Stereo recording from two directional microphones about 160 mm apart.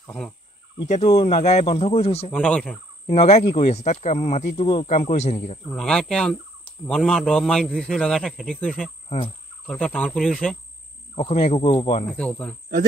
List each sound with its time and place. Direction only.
0.0 s speech: 5° left (ahead or behind)
0.8 s speech: 40° left (ahead or behind)
2.3 s speech: 5° left (ahead or behind)
3.1 s speech: 40° left (ahead or behind)
5.7 s a man's voice: 5° left (ahead or behind)
11.1 s speech: 40° left (ahead or behind)
12.1 s speech: 10° left (ahead or behind)